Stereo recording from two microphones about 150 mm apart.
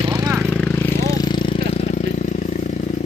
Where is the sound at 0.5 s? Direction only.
5° left (ahead or behind).